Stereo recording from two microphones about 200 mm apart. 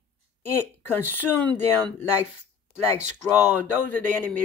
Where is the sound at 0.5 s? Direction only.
10° left (ahead or behind).